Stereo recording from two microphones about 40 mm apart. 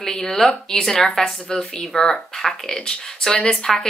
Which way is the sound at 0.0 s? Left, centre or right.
Centre.